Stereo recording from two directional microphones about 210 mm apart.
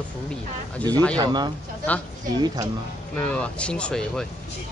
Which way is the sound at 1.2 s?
20° right (ahead or behind).